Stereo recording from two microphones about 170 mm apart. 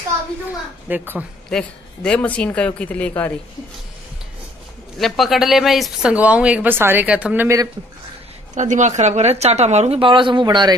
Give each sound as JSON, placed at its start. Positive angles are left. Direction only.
{"t": 0.8, "sound": "speech", "side_deg": -10}
{"t": 1.5, "sound": "speech", "side_deg": 5}
{"t": 4.9, "sound": "speech", "side_deg": 0}
{"t": 8.5, "sound": "speech", "side_deg": -45}